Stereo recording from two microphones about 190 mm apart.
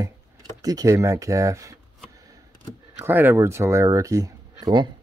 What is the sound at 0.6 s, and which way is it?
Speech, 20° right (ahead or behind).